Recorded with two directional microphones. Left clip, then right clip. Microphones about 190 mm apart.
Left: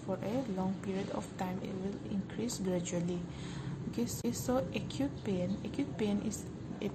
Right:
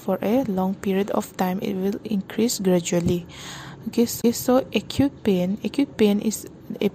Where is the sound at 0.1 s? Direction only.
55° right (ahead or behind).